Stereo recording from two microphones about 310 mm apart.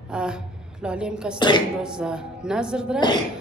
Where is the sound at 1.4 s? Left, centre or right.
Centre.